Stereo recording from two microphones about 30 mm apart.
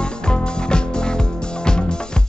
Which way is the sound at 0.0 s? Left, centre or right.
Left.